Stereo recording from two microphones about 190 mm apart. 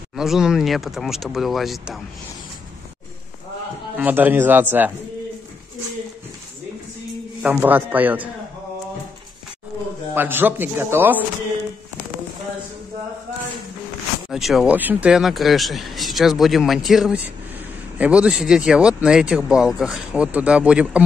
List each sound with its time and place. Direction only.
0.1 s speech: centre (ahead or behind)
3.9 s a man's voice: 10° right (ahead or behind)
7.4 s a man's voice: 10° right (ahead or behind)
10.1 s a man's voice: 10° right (ahead or behind)
14.3 s speech: centre (ahead or behind)